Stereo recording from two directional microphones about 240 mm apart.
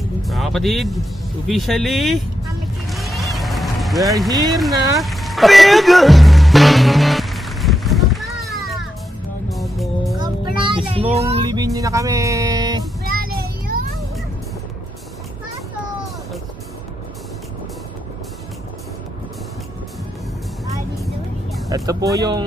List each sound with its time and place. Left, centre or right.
0.2 s music: centre
1.5 s speech: centre
2.9 s music: centre
4.3 s speech: centre
4.9 s music: centre
10.2 s child singing: right
11.1 s speech: right
13.0 s child singing: right
21.6 s speech: centre